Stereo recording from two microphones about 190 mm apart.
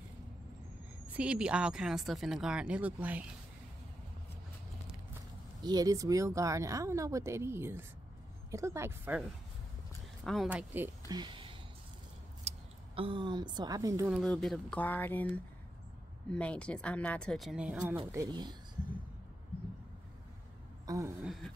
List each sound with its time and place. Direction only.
1.0 s speech: 5° right (ahead or behind)
5.6 s speech: 20° right (ahead or behind)
10.2 s speech: centre (ahead or behind)
11.1 s a sound: 25° right (ahead or behind)
12.4 s a woman's voice: 30° right (ahead or behind)
14.1 s speech: 5° left (ahead or behind)
17.7 s speech: 20° right (ahead or behind)
20.8 s a woman's voice: 15° right (ahead or behind)
21.2 s speech: centre (ahead or behind)